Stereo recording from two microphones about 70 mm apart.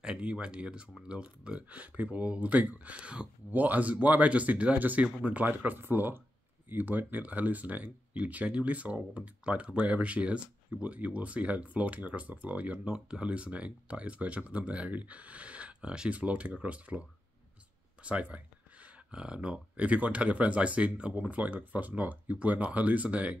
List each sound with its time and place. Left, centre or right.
0.0 s speech: centre
18.0 s speech: centre